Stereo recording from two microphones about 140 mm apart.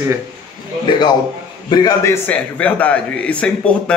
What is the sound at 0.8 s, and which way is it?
A man's voice, 30° left (ahead or behind).